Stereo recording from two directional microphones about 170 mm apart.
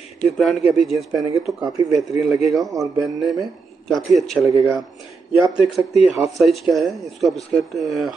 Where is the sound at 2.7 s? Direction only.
20° right (ahead or behind).